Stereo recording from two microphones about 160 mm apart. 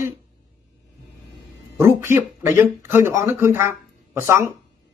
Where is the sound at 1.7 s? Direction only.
15° right (ahead or behind).